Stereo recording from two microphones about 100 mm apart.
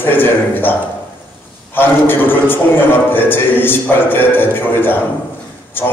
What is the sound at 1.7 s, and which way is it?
A man's voice, 20° left (ahead or behind).